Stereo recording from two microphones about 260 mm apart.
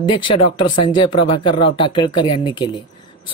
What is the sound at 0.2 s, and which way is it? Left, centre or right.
Speech, centre.